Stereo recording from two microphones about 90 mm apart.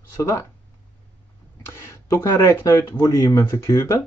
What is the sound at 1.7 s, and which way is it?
Speech, 30° left (ahead or behind).